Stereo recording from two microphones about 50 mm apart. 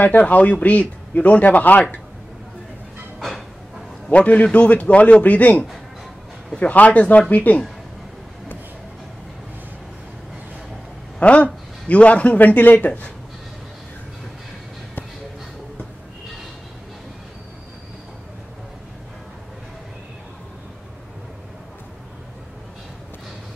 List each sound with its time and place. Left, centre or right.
0.0 s a man's voice: left
3.2 s bow-wow: centre
4.1 s a man's voice: left
11.1 s a man's voice: left